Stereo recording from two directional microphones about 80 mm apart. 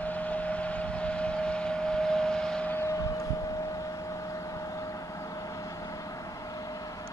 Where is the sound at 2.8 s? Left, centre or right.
Left.